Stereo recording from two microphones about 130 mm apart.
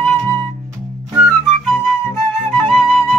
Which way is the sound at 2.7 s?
Centre (ahead or behind).